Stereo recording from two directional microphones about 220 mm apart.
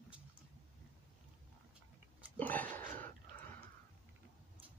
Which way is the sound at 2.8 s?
35° right (ahead or behind).